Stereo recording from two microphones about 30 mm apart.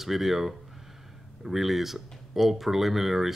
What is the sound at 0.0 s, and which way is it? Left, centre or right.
Speech, centre.